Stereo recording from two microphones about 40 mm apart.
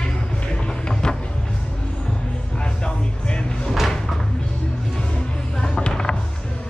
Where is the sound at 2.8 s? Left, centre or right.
Left.